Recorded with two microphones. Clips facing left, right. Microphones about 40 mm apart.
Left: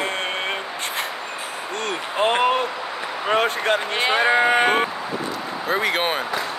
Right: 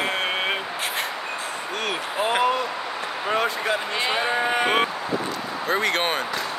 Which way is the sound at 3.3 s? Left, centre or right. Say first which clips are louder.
Left 4 dB; left.